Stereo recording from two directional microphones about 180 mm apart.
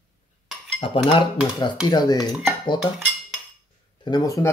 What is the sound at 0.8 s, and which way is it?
Speech, 25° left (ahead or behind).